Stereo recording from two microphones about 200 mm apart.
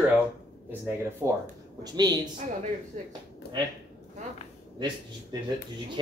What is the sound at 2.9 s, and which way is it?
Speech, 35° right (ahead or behind).